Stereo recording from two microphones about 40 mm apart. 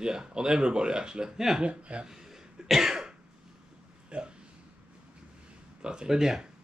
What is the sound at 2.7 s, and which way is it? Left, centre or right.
Cough, centre.